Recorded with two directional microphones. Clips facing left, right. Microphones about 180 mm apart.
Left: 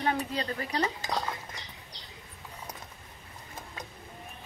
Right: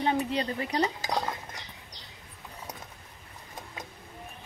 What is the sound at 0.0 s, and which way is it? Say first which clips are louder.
Dishes: right 3 dB; 20° right (ahead or behind).